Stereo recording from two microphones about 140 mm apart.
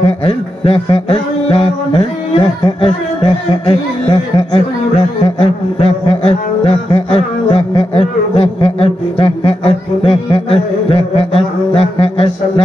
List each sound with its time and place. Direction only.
0.0 s mantra: 45° left (ahead or behind)